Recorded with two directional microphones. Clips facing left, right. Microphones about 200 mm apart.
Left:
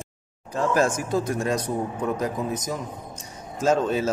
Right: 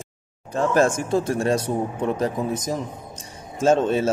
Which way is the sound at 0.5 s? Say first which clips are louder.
Right 3 dB; 25° right (ahead or behind).